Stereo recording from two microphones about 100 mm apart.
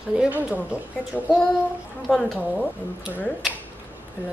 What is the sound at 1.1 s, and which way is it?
Speech, 5° left (ahead or behind).